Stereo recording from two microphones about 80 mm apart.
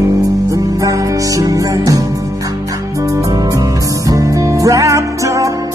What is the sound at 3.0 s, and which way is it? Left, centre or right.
Music, right.